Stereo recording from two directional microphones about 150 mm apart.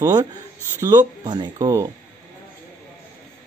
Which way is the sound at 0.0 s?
20° right (ahead or behind).